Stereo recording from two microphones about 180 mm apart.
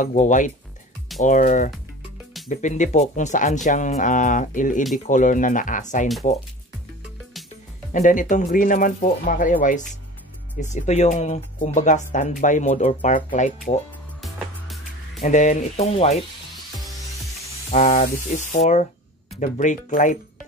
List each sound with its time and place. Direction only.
0.0 s speech: 45° left (ahead or behind)
7.9 s speech: 45° left (ahead or behind)
14.2 s music: centre (ahead or behind)
15.2 s speech: 45° left (ahead or behind)
17.6 s speech: 40° left (ahead or behind)